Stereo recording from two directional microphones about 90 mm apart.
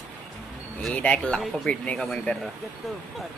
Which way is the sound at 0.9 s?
15° left (ahead or behind).